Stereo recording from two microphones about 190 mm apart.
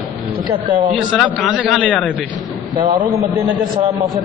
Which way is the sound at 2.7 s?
25° right (ahead or behind).